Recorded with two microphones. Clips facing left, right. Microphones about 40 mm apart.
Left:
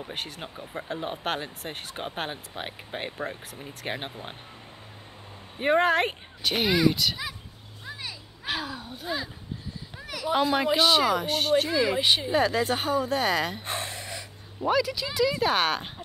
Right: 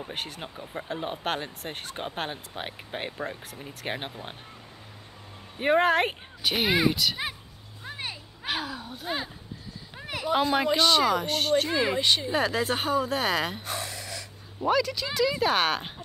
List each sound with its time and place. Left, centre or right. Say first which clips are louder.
0.0 s speech: even; centre
5.6 s speech: even; centre
8.6 s a sound: even; centre
9.0 s speech: even; right
9.9 s a sound: right 3 dB; right
10.2 s speech: even; centre
12.3 s speech: left 2 dB; centre
13.7 s gasp: left 1 dB; left
14.6 s speech: even; centre